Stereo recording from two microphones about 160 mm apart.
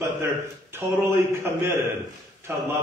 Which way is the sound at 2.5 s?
15° right (ahead or behind).